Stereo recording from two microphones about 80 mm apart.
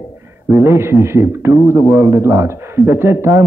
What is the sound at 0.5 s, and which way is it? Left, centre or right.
A man's voice, right.